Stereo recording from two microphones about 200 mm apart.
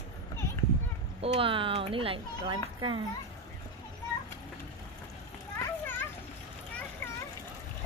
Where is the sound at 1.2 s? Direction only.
25° right (ahead or behind).